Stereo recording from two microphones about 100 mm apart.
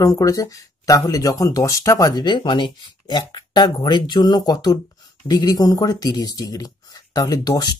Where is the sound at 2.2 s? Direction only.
50° left (ahead or behind).